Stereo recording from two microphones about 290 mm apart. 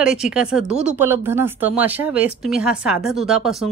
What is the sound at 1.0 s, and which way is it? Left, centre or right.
Speech, centre.